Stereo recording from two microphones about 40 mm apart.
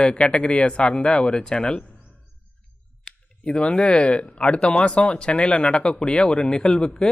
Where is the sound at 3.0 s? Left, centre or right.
Left.